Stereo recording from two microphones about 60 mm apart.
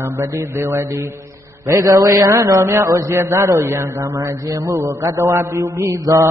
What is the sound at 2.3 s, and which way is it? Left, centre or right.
Speech, right.